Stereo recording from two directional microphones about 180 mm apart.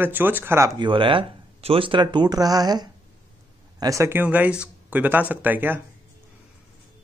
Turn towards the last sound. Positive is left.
turn(degrees=-10)  # may be behind; listen again after turning